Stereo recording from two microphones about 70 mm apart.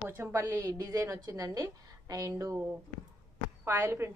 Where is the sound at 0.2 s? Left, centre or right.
Right.